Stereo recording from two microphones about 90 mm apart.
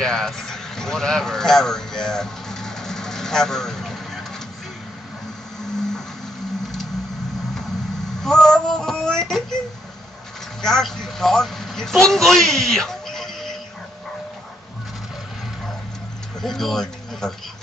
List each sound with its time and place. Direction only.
0.0 s a sound: 5° left (ahead or behind)
5.6 s vehicle: 5° left (ahead or behind)
8.2 s female singing: 5° left (ahead or behind)
10.6 s a man's voice: 5° left (ahead or behind)
16.3 s speech: 5° left (ahead or behind)